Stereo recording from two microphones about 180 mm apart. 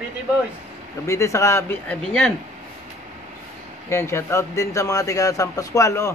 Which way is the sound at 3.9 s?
15° left (ahead or behind).